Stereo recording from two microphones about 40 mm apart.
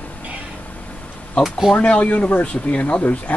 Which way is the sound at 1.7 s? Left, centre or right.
Left.